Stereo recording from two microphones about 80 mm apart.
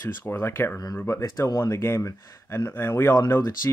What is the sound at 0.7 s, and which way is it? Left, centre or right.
Speech, left.